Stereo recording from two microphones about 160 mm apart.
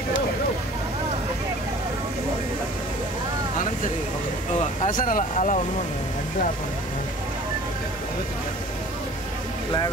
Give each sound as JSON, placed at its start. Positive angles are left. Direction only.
{"t": 4.6, "sound": "speech", "side_deg": 55}